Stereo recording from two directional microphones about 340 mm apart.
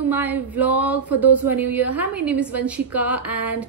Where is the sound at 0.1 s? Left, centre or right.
Centre.